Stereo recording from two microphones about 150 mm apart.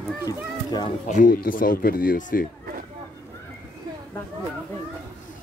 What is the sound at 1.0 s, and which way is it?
Speech, 60° left (ahead or behind).